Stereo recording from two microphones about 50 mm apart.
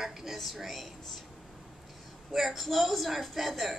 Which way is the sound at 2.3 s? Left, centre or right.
Centre.